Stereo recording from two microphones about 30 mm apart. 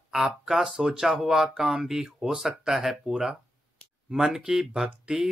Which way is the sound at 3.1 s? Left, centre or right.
Right.